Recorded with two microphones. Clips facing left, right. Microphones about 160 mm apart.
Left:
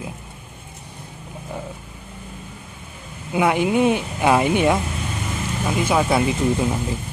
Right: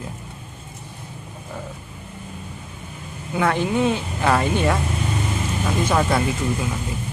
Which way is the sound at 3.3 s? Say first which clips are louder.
Left 2 dB; 15° left (ahead or behind).